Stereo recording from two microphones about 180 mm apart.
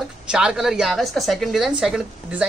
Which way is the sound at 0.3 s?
5° right (ahead or behind).